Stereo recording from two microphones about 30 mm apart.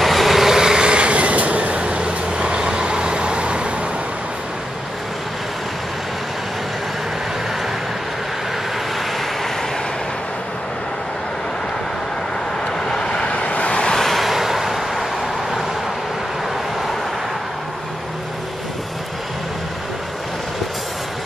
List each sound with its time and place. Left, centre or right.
0.0 s vehicle: centre
0.6 s vehicle: right
0.8 s vehicle: right
12.8 s vehicle: centre
13.3 s vehicle: left
13.9 s vehicle: centre
14.2 s vehicle: centre